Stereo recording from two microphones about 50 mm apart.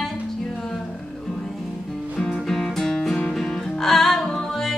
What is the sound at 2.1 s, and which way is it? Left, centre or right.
Music, centre.